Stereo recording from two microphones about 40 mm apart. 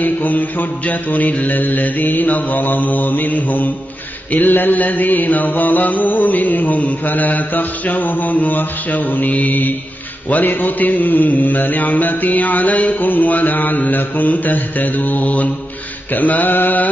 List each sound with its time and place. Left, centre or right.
0.0 s mantra: left